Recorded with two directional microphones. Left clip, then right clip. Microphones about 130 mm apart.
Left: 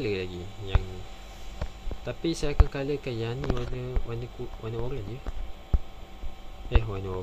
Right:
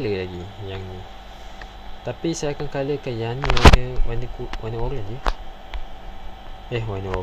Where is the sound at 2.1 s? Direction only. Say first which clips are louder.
Right 5 dB; 10° left (ahead or behind).